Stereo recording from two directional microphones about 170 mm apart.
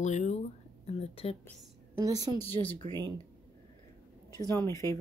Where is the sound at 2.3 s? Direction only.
35° left (ahead or behind).